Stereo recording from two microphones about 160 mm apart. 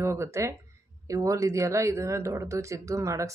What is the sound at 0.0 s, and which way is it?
Speech, 15° right (ahead or behind).